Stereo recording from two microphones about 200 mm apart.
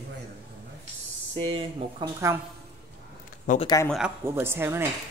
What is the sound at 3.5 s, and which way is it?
Speech, 40° left (ahead or behind).